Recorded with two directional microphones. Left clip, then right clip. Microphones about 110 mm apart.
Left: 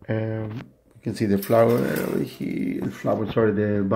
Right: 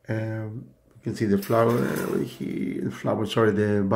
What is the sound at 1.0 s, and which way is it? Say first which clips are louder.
Speech: left 1 dB; 15° left (ahead or behind).